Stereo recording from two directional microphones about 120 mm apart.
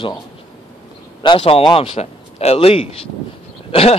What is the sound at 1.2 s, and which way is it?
Speech, 45° left (ahead or behind).